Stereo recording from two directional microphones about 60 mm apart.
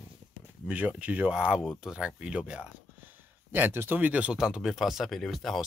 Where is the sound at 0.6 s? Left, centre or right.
Right.